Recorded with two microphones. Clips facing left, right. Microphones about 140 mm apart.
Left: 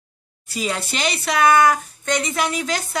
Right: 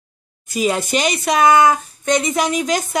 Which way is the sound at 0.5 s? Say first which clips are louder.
Right 7 dB; 15° right (ahead or behind).